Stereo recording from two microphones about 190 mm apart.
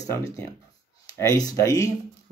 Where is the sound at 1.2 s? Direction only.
20° left (ahead or behind).